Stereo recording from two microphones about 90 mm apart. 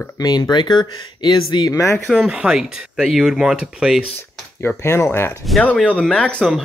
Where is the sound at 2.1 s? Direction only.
5° right (ahead or behind).